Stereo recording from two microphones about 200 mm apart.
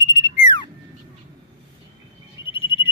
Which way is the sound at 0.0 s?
20° left (ahead or behind).